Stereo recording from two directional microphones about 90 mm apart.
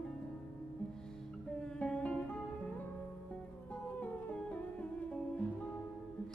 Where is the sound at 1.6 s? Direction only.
10° left (ahead or behind).